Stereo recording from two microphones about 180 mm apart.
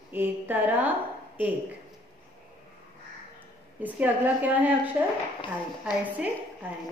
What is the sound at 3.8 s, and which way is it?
A woman's voice, 10° right (ahead or behind).